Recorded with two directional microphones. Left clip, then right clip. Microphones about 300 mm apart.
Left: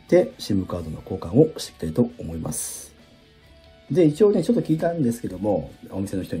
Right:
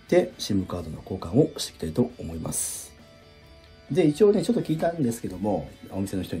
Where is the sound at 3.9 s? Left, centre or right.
Centre.